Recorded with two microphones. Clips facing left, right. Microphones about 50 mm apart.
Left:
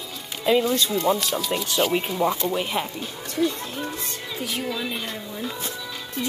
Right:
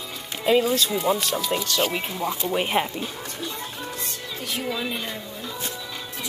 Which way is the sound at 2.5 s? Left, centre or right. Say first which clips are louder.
Right 2 dB; right.